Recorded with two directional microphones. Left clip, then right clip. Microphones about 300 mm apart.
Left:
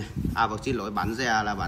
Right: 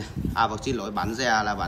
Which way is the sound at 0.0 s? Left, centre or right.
Centre.